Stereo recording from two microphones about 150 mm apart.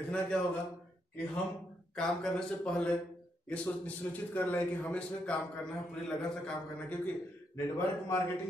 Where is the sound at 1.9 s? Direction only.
5° left (ahead or behind).